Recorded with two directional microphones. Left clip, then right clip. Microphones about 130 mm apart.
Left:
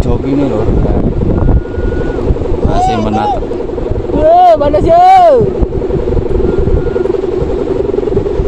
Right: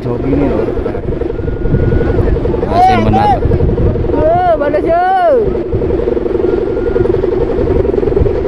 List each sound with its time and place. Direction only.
2.8 s speech: 55° right (ahead or behind)
4.3 s speech: 30° left (ahead or behind)